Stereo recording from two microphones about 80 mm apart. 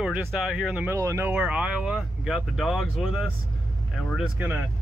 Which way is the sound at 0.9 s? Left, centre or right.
Right.